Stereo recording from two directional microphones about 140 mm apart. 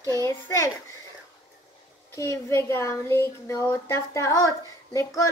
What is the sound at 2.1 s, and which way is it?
Speech, 20° left (ahead or behind).